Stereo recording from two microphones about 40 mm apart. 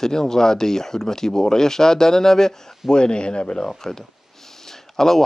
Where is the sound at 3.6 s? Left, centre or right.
Centre.